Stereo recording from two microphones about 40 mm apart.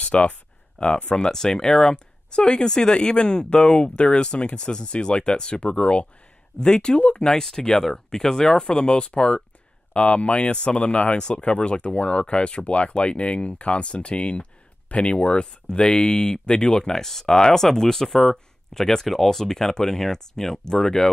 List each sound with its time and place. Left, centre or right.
0.0 s speech: left; by 8.6 s centre
8.6 s speech: left